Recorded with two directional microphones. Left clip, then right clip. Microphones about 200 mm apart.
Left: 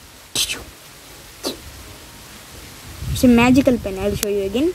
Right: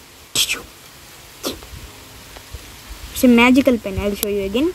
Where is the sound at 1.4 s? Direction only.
15° right (ahead or behind).